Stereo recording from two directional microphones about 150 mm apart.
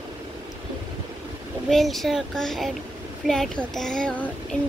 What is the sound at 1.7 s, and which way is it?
Speech, centre (ahead or behind).